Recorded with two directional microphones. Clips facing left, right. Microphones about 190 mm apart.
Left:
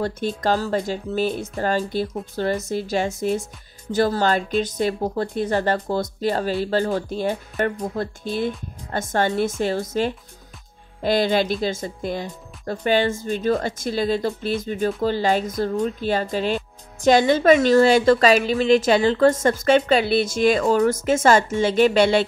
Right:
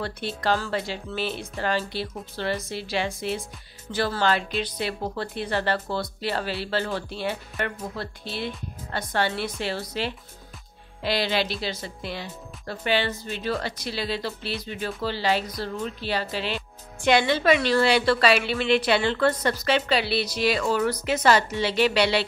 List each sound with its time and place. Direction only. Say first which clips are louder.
0.0 s speech: left 5 dB; 45° left (ahead or behind)